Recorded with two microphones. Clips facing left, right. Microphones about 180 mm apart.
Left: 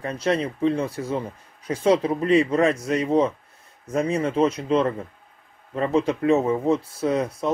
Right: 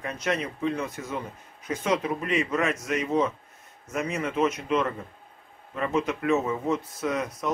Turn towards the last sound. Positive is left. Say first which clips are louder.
# left 6 dB
turn(degrees=30)  # may be behind; listen again after turning